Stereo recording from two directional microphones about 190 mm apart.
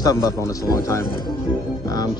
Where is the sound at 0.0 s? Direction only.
20° left (ahead or behind).